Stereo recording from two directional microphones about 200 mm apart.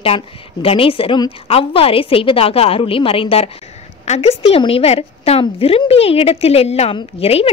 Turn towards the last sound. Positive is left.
turn(degrees=30)  # may be behind; listen again after turning